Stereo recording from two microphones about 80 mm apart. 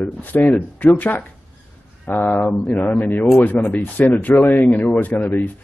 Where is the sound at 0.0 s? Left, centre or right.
Left.